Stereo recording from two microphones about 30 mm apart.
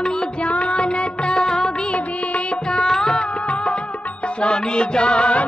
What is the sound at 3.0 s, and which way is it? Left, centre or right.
Music, left.